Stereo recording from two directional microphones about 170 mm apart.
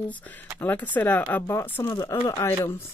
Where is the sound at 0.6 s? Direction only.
10° left (ahead or behind).